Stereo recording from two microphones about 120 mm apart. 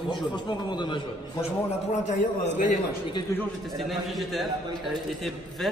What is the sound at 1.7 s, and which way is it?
A man's voice, 75° left (ahead or behind).